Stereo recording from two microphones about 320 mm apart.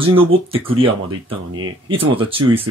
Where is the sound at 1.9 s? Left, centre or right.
Centre.